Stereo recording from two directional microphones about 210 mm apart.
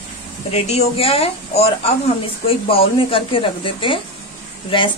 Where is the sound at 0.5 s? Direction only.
30° left (ahead or behind).